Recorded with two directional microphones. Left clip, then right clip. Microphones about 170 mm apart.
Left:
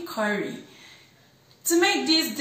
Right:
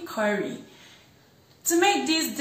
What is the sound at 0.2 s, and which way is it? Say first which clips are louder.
Speech: right 1 dB; 10° right (ahead or behind).